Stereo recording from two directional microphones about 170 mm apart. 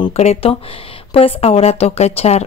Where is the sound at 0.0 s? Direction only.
40° left (ahead or behind).